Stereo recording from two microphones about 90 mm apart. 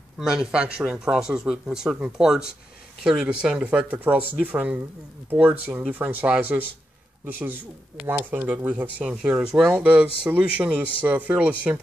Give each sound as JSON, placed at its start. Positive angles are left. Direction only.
{"t": 0.2, "sound": "speech", "side_deg": -5}